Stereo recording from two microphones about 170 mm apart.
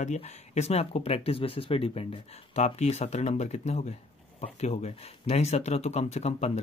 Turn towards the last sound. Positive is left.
turn(degrees=40)  # may be behind; listen again after turning